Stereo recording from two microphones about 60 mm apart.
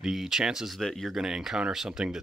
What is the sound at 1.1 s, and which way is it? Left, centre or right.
Speech, centre.